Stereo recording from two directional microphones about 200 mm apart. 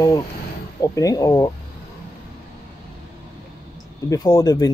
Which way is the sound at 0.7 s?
15° left (ahead or behind).